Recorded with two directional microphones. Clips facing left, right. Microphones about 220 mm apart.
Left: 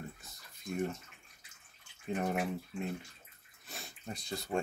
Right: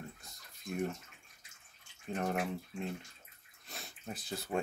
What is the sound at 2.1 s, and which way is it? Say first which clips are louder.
Speech: left 1 dB; 5° left (ahead or behind).